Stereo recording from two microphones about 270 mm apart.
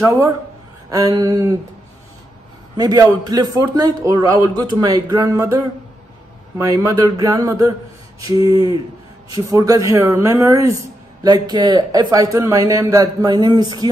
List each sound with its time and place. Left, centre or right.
0.0 s a man's voice: centre
2.8 s a man's voice: centre
6.6 s a man's voice: centre